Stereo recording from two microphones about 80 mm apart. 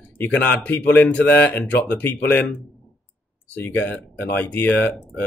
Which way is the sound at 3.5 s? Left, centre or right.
Centre.